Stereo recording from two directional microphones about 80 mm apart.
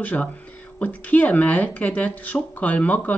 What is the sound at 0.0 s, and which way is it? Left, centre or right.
Speech, centre.